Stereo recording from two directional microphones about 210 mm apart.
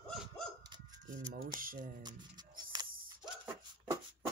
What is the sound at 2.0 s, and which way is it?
Music, 20° right (ahead or behind).